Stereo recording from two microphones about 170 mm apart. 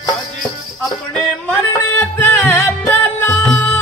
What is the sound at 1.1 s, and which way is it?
Music, 10° left (ahead or behind).